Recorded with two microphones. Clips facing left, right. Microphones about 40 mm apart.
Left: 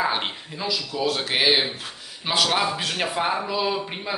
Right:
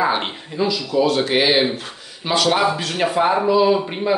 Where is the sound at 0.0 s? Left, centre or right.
Centre.